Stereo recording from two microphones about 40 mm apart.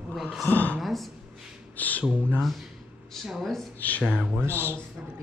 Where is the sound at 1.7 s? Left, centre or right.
Left.